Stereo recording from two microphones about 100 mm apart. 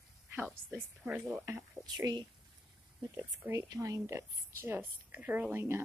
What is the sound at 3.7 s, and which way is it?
A woman's voice, 35° right (ahead or behind).